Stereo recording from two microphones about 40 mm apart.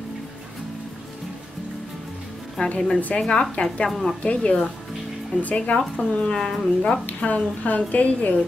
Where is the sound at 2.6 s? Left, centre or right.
Centre; by 5.8 s left.